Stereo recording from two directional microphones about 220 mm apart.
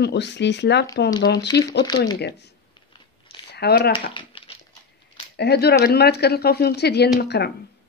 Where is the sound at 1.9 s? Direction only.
20° left (ahead or behind).